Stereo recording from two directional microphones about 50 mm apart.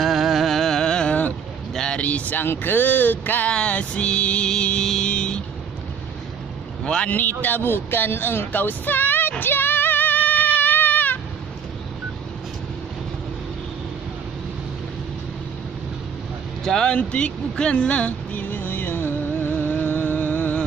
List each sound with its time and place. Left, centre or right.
0.0 s music: centre
2.0 s speech: left
2.4 s speech: left
3.4 s music: left
6.8 s vehicle: centre
7.1 s speech: left
9.4 s a sound: left
16.6 s speech: centre
16.9 s music: left
18.3 s music: left